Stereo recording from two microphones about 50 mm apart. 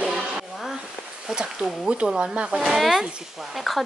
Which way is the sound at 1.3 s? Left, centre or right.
Centre.